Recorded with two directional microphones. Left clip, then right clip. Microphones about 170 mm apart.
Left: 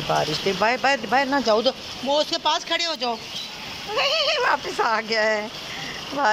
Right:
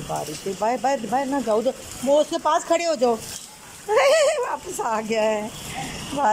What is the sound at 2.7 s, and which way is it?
Speech, 25° right (ahead or behind).